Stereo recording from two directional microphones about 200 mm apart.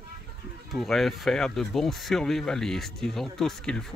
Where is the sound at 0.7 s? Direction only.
Centre (ahead or behind).